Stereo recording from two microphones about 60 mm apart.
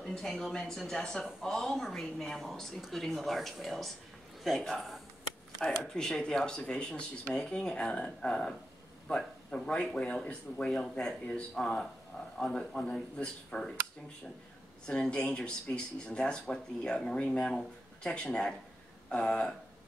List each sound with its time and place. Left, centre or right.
0.1 s a woman's voice: centre
14.9 s speech: centre